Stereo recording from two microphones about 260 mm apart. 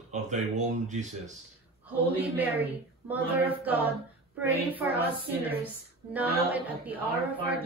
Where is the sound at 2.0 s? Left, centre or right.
Centre.